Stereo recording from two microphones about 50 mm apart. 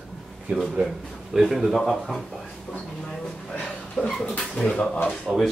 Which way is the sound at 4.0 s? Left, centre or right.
Centre.